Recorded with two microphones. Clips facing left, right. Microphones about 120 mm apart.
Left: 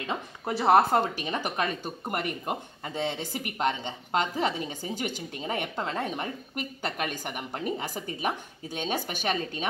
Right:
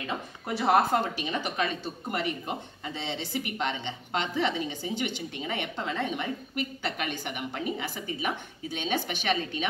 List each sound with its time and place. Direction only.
0.6 s speech: 35° left (ahead or behind)